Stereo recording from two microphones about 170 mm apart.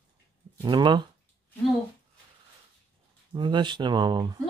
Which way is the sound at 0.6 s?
25° right (ahead or behind).